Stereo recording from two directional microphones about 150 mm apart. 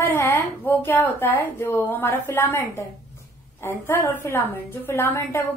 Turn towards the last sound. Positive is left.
turn(degrees=15)  # may be behind; listen again after turning